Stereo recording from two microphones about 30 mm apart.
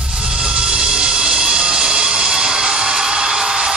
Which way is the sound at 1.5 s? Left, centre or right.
Right.